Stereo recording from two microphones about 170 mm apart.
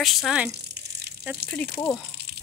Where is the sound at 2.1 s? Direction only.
70° right (ahead or behind).